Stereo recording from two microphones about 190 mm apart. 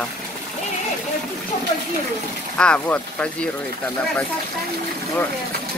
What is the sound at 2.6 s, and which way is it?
Speech, 5° left (ahead or behind).